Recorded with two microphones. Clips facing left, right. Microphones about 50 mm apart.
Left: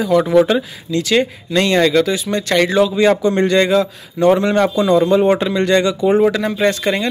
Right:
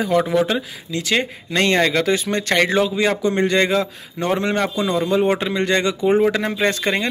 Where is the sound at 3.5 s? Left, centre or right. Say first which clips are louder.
Left 4 dB; right.